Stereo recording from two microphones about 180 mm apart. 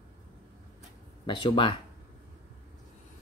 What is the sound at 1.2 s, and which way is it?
Speech, 25° left (ahead or behind).